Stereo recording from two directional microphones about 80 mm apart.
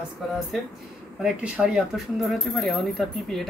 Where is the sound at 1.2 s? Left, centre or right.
Centre.